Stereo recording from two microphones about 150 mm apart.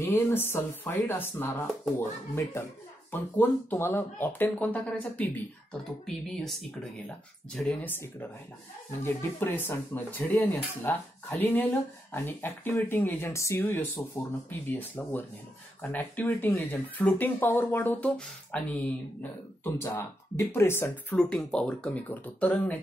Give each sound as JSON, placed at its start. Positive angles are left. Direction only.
{"t": 0.0, "sound": "speech", "side_deg": 15}
{"t": 7.9, "sound": "speech", "side_deg": 15}